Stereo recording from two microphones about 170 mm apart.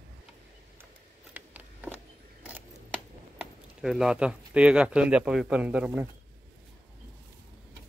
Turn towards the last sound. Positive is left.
turn(degrees=-10)  # may be behind; listen again after turning